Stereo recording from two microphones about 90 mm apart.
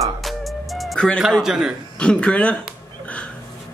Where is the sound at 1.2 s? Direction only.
5° right (ahead or behind).